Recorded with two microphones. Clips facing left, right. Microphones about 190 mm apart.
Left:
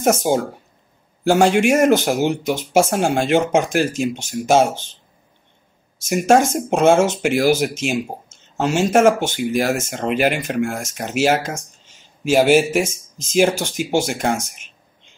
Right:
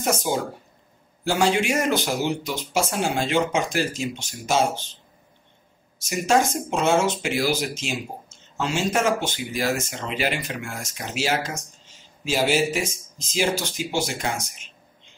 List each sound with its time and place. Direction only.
0.0 s speech: 50° left (ahead or behind)
6.0 s speech: 50° left (ahead or behind)